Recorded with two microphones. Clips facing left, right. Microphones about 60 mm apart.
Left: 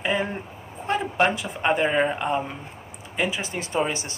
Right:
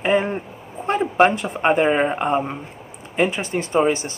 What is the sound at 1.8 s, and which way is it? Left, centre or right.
Speech, right.